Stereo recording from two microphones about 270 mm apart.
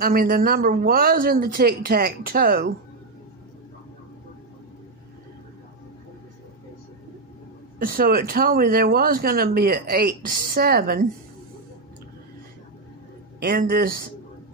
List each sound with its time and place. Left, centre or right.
0.0 s speech: right
7.8 s speech: right
13.4 s speech: right